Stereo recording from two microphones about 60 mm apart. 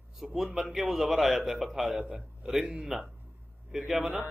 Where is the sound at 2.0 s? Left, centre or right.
Centre.